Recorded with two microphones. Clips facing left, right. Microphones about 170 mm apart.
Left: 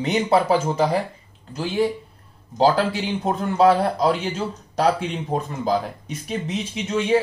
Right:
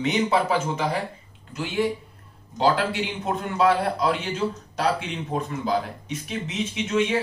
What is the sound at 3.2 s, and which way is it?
Speech, 35° left (ahead or behind).